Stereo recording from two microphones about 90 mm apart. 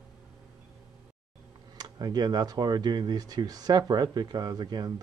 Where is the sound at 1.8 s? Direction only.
50° right (ahead or behind).